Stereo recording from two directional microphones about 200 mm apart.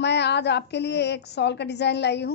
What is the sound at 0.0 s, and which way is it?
A woman's voice, 60° left (ahead or behind).